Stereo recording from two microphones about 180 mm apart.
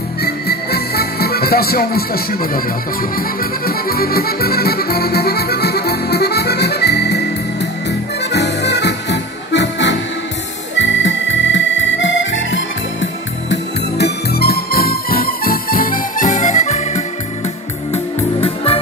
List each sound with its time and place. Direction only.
0.2 s music: 60° left (ahead or behind)
8.3 s music: 70° left (ahead or behind)
10.8 s accordion: 90° left; by 17.0 s 40° left (ahead or behind)
17.9 s music: 30° left (ahead or behind)